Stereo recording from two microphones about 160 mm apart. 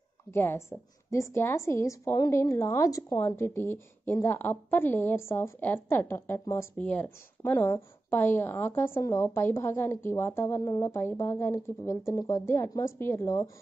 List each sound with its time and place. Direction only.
0.3 s a woman's voice: 15° left (ahead or behind)
6.8 s a woman's voice: 10° left (ahead or behind)